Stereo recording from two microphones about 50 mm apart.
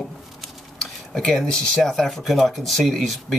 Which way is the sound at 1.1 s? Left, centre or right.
Centre.